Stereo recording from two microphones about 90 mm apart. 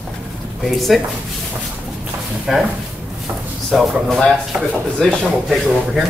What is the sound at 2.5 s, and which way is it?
Speech, 5° right (ahead or behind).